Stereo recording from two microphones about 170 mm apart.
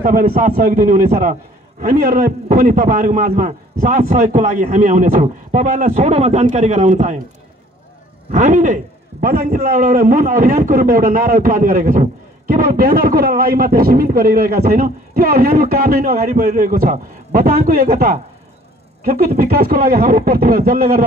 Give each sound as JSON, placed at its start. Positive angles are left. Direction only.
{"t": 0.0, "sound": "a man's voice", "side_deg": -55}
{"t": 8.3, "sound": "a man's voice", "side_deg": -45}